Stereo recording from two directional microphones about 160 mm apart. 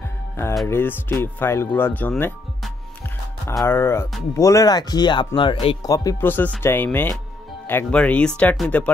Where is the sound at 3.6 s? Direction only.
15° left (ahead or behind); by 5.7 s 35° left (ahead or behind).